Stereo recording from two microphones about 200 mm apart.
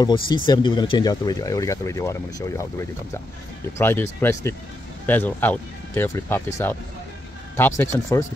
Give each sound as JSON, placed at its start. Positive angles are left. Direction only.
{"t": 0.0, "sound": "speech", "side_deg": 20}
{"t": 3.7, "sound": "speech", "side_deg": 15}